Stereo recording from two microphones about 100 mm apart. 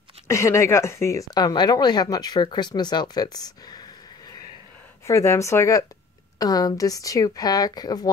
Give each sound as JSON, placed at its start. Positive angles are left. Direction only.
{"t": 0.3, "sound": "speech", "side_deg": 30}
{"t": 5.0, "sound": "a woman's voice", "side_deg": 30}